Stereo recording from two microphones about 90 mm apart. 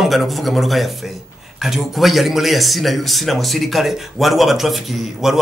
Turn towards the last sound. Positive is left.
turn(degrees=0)  # may be behind; listen again after turning